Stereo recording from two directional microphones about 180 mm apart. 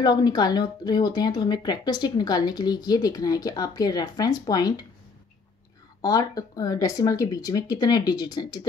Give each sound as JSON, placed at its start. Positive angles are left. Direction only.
{"t": 0.0, "sound": "speech", "side_deg": 25}
{"t": 6.0, "sound": "speech", "side_deg": 20}